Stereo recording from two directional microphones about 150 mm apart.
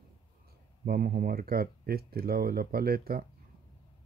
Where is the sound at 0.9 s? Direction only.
80° right.